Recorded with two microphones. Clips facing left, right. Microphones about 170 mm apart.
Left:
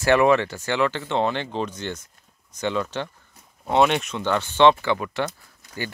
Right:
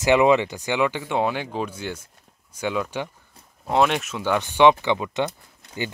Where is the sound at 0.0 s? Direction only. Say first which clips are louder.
Right 1 dB; 15° right (ahead or behind).